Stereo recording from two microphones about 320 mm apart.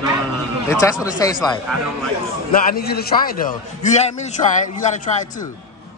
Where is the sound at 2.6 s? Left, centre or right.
Left.